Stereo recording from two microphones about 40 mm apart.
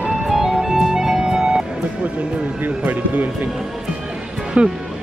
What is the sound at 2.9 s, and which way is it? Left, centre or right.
Speech, right.